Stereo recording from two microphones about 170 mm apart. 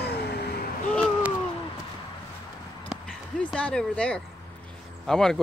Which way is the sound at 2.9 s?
5° right (ahead or behind).